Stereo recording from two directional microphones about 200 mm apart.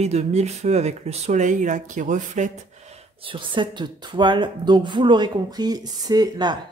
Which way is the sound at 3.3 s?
25° right (ahead or behind).